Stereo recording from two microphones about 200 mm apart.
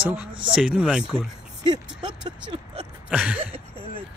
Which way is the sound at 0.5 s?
5° right (ahead or behind).